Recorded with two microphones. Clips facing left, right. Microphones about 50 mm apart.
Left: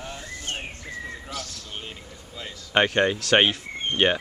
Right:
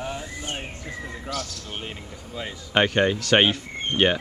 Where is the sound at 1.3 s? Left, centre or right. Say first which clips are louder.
Right 3 dB; right.